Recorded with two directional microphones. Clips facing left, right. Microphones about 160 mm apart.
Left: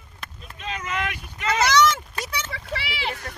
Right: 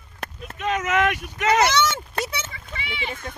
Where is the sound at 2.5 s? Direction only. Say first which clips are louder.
Left 4 dB; 75° left (ahead or behind).